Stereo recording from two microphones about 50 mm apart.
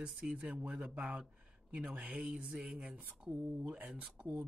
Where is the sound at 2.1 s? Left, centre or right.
Centre.